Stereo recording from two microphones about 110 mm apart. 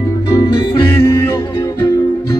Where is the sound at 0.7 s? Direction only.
25° left (ahead or behind).